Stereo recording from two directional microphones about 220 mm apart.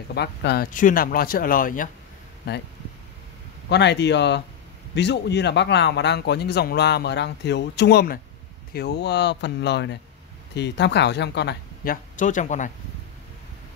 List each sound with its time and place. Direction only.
0.1 s speech: 50° left (ahead or behind)
0.7 s speech: 35° left (ahead or behind)
2.4 s speech: 50° left (ahead or behind)
3.6 s speech: 50° left (ahead or behind); by 12.7 s 35° left (ahead or behind)